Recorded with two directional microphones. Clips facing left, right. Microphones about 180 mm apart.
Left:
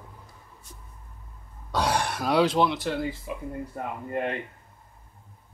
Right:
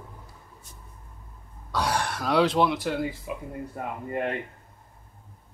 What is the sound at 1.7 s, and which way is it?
Speech, 20° left (ahead or behind).